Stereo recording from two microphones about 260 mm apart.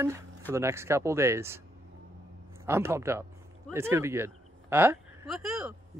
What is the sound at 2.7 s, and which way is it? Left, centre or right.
A woman's voice, centre.